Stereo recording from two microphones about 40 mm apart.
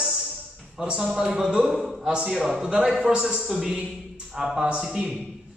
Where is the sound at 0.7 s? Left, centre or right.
Right.